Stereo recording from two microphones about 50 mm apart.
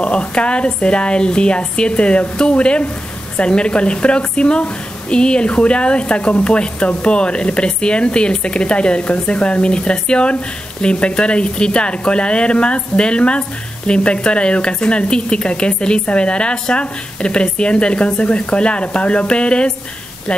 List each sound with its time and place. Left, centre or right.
0.0 s speech: left